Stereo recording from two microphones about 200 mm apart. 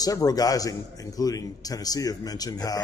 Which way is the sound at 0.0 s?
20° left (ahead or behind).